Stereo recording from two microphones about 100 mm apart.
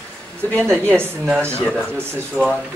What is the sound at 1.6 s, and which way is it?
Speech, 10° left (ahead or behind).